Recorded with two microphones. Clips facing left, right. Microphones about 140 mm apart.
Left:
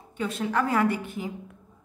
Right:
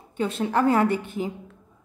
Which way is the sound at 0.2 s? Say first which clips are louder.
Right 4 dB; 30° right (ahead or behind).